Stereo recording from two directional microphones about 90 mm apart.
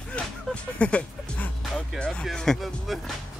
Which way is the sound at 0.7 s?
15° left (ahead or behind).